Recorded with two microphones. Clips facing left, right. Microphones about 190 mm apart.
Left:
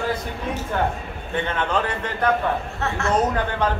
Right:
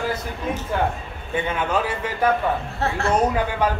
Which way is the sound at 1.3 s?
10° right (ahead or behind).